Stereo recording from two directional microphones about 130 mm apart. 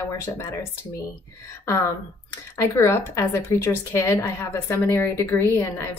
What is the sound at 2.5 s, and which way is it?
A woman's voice, 20° left (ahead or behind).